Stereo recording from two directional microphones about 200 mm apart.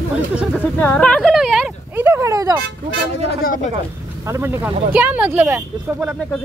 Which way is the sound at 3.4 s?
45° left (ahead or behind).